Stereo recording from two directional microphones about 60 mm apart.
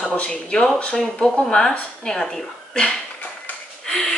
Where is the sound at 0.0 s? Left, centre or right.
Centre.